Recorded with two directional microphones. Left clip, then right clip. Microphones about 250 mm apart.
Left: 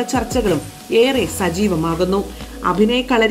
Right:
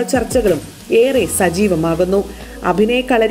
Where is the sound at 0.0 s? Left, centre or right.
Centre.